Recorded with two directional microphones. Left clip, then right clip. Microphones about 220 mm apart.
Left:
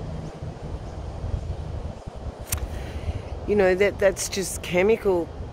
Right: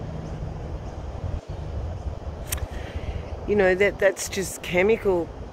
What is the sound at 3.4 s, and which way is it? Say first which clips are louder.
Speech: even; 20° left (ahead or behind).